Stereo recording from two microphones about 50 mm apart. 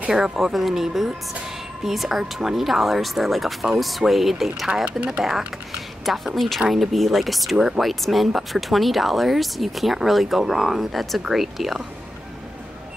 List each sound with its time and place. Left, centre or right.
0.1 s speech: centre
7.5 s speech: centre
7.8 s speech: centre